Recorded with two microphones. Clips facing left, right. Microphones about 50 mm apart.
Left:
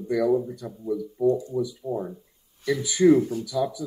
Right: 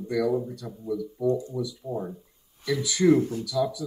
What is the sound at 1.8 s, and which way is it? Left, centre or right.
Speech, centre.